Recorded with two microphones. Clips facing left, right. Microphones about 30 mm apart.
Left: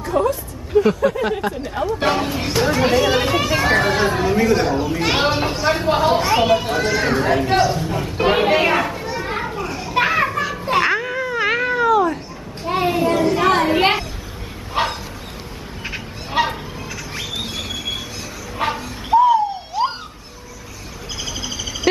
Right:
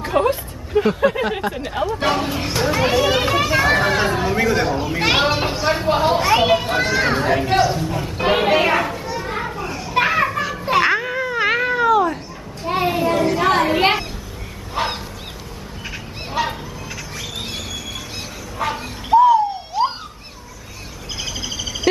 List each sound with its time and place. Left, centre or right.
0.0 s a sound: right
1.0 s speech: centre
1.4 s speech: centre
7.8 s children playing: centre
9.4 s children playing: centre
12.6 s a sound: centre
14.8 s bow-wow: left
15.8 s fowl: left
18.7 s a sound: centre
21.2 s bird: centre